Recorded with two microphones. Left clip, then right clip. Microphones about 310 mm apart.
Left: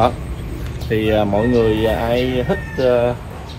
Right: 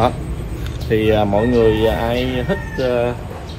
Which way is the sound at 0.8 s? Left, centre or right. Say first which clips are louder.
Right 1 dB; centre.